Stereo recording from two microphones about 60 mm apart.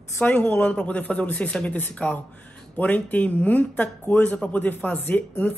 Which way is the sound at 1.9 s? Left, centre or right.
Left.